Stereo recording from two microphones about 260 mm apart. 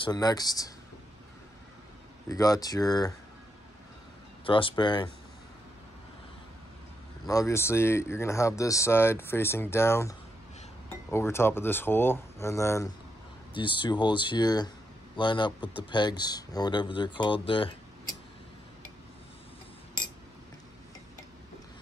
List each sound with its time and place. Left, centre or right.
0.0 s speech: centre
2.2 s speech: centre
4.5 s speech: centre
7.2 s speech: centre